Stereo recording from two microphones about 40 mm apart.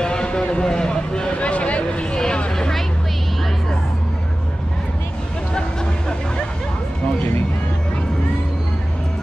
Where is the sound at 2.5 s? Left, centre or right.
Centre.